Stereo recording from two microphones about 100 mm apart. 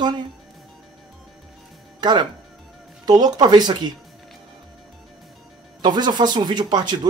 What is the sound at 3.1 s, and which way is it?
Speech, 45° right (ahead or behind).